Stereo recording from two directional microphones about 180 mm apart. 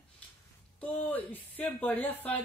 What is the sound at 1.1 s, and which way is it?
Speech, 10° left (ahead or behind).